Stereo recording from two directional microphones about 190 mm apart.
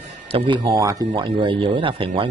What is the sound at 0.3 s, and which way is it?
Speech, 25° right (ahead or behind).